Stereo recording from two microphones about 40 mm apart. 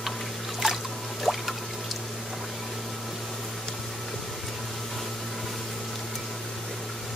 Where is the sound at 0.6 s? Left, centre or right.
Centre.